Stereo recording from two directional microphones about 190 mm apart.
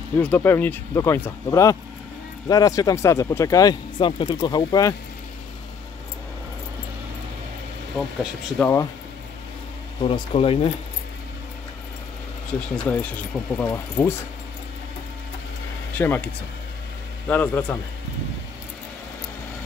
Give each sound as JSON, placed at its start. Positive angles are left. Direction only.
{"t": 0.2, "sound": "speech", "side_deg": 10}
{"t": 8.2, "sound": "speech", "side_deg": 5}
{"t": 10.0, "sound": "speech", "side_deg": 30}
{"t": 12.4, "sound": "speech", "side_deg": 5}
{"t": 16.0, "sound": "speech", "side_deg": 10}
{"t": 17.3, "sound": "speech", "side_deg": 10}